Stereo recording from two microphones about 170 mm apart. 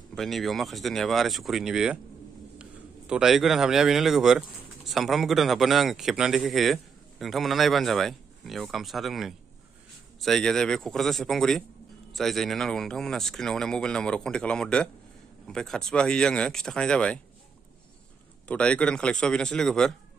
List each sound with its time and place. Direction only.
0.1 s speech: centre (ahead or behind)
18.5 s speech: 5° left (ahead or behind)